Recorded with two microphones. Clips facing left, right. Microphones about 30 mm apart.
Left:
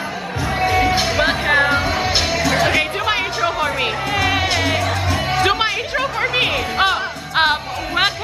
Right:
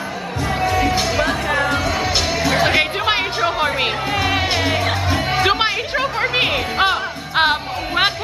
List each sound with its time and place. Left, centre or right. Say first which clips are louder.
0.6 s music: left 2 dB; centre
1.2 s music: left 3 dB; left
1.7 s music: left 1 dB; centre
2.4 s music: right 1 dB; centre
2.7 s music: right 1 dB; right
4.1 s music: left 1 dB; centre